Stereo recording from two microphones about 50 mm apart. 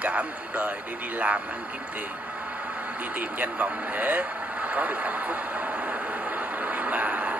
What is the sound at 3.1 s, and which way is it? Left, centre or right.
Speech, right.